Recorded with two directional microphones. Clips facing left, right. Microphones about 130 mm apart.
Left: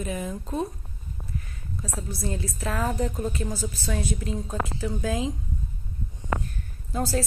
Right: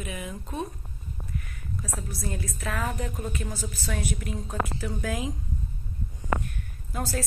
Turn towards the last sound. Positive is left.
turn(degrees=30)  # may be behind; listen again after turning